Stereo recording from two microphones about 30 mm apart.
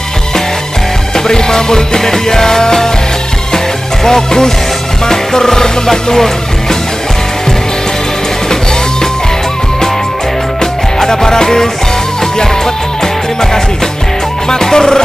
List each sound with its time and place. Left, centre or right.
1.1 s music: centre
10.6 s music: left
13.0 s music: centre